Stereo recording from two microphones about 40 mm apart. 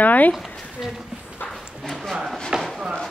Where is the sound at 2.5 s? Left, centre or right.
Right.